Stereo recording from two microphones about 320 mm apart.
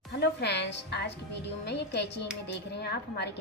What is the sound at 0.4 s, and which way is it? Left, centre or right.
A woman's voice, left.